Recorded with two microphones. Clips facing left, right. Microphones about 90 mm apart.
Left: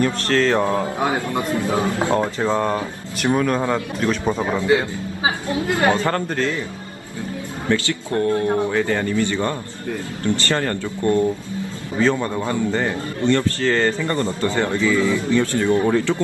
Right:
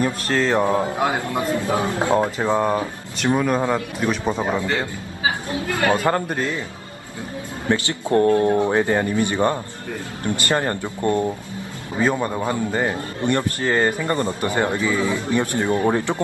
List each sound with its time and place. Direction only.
0.0 s mantra: 15° right (ahead or behind)
1.1 s a man's voice: 15° right (ahead or behind)
4.6 s a man's voice: 15° left (ahead or behind)
6.0 s a man's voice: 15° right (ahead or behind)
7.6 s mantra: 20° right (ahead or behind)
12.0 s a man's voice: 15° right (ahead or behind)